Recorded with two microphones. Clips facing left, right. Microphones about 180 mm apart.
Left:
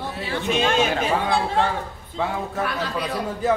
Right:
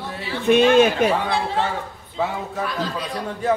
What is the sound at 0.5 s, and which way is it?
Speech, 55° right (ahead or behind).